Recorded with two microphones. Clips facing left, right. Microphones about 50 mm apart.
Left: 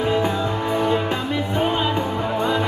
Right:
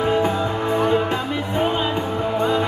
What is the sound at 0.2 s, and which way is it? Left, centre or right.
Music, right.